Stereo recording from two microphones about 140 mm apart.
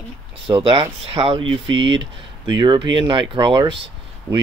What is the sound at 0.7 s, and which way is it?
Speech, 40° right (ahead or behind).